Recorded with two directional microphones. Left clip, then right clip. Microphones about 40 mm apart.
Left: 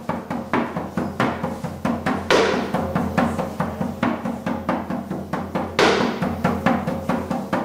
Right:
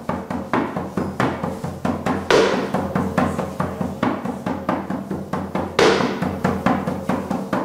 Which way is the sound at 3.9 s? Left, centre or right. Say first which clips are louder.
Right 1 dB; right.